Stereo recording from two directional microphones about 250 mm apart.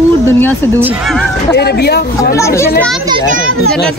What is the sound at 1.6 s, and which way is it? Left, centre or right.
Speech, left.